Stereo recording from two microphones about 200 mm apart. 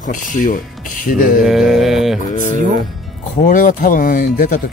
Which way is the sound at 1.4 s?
Centre (ahead or behind).